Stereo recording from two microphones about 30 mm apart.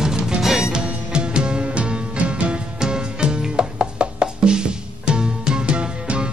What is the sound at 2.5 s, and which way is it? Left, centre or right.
Music, right.